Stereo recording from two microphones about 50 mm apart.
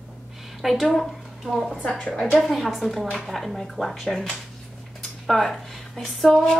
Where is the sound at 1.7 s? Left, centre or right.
Centre.